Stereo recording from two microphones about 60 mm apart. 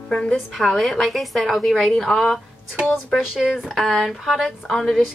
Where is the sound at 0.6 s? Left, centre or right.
Centre.